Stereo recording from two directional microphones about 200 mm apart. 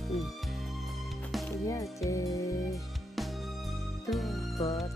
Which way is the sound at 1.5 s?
15° left (ahead or behind).